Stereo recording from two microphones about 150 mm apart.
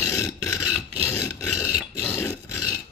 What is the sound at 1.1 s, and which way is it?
Filing, 15° left (ahead or behind).